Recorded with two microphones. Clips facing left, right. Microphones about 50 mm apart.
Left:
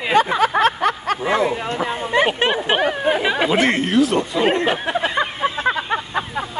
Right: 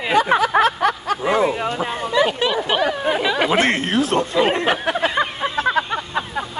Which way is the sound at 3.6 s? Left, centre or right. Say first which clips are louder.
Left 2 dB; right.